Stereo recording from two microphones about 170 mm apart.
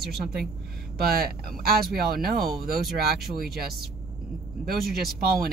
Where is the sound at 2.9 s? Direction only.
65° right (ahead or behind).